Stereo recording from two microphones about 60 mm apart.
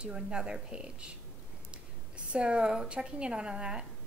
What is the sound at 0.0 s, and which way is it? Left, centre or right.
A woman's voice, centre.